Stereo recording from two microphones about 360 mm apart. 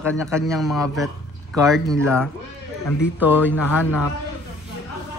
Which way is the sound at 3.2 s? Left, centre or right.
Centre.